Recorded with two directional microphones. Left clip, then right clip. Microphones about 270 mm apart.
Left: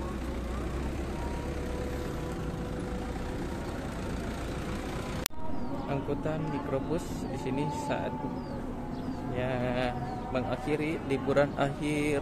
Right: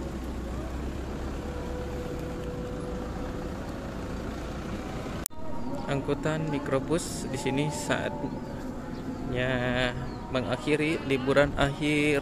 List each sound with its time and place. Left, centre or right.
5.9 s speech: centre
9.3 s speech: centre